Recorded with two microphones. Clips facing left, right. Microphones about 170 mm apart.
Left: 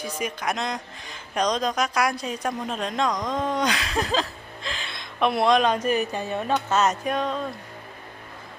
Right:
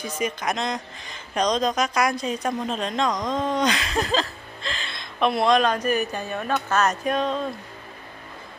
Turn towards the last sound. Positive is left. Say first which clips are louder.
# right 2 dB
turn(degrees=10)  # may be behind; listen again after turning